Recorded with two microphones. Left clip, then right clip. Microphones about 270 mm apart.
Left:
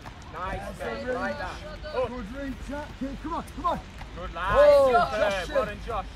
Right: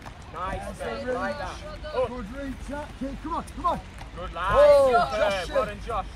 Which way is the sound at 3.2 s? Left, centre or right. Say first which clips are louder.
Right 2 dB; centre.